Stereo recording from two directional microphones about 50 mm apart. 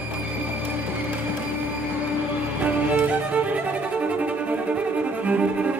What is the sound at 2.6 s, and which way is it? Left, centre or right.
Music, right.